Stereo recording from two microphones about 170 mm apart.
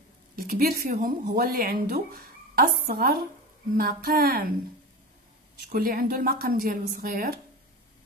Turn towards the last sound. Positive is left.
turn(degrees=-60)  # may be behind; listen again after turning